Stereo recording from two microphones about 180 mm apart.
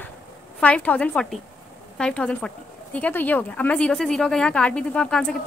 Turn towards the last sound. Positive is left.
turn(degrees=5)  # may be behind; listen again after turning